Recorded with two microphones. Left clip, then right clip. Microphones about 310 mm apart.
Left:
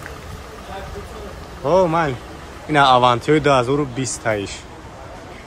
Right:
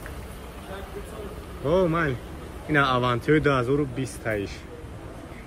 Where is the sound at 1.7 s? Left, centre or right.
Centre.